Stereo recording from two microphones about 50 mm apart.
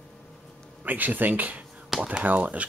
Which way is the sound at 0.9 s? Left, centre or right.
Right.